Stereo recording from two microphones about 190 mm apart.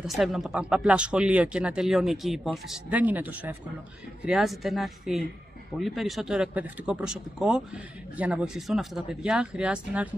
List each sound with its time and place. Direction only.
0.0 s speech: centre (ahead or behind)